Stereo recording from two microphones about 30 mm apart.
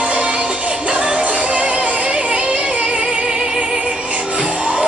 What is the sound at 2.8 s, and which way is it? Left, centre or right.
Music, right.